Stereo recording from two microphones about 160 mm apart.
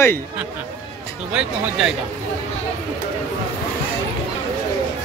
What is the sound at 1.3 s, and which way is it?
Speech, 5° right (ahead or behind).